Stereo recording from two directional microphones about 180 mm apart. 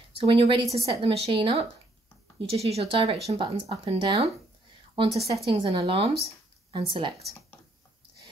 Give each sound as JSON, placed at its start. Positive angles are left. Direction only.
{"t": 0.2, "sound": "speech", "side_deg": -30}